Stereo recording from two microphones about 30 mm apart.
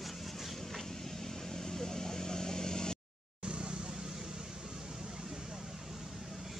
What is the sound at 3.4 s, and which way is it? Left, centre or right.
Vehicle, right.